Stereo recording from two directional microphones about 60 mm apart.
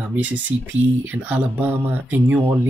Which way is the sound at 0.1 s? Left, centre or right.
Right.